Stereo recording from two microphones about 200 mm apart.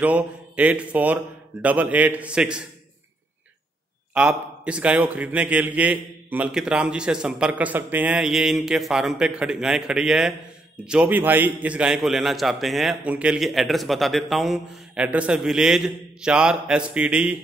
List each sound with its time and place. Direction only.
0.0 s a man's voice: 5° right (ahead or behind)
4.1 s a man's voice: 5° right (ahead or behind)